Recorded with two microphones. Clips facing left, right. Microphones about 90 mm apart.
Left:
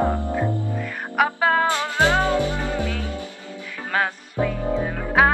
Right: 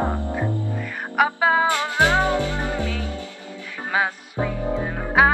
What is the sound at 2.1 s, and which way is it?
Music, 20° right (ahead or behind).